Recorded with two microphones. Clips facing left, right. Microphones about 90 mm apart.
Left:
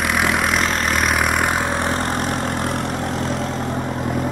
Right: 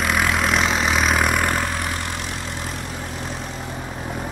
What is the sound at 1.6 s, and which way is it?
Vehicle, 25° left (ahead or behind).